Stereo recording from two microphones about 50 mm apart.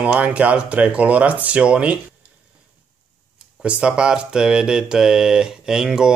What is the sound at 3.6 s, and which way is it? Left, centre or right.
Speech, right.